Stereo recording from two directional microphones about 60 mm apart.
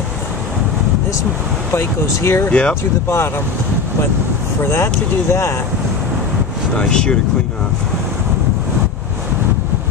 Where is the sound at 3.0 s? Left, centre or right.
Left.